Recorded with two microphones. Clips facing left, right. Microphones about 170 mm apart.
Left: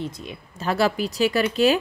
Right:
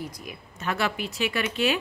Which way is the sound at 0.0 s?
25° left (ahead or behind).